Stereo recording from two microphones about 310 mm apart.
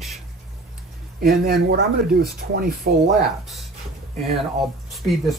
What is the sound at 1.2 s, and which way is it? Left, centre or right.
Speech, right.